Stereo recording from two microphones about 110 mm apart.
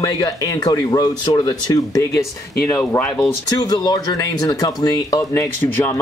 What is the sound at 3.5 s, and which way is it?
Speech, 40° left (ahead or behind).